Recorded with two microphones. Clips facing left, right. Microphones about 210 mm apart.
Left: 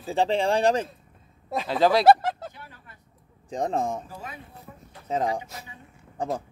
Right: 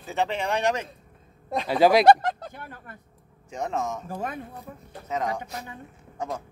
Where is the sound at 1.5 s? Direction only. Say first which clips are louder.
Right 1 dB; centre (ahead or behind).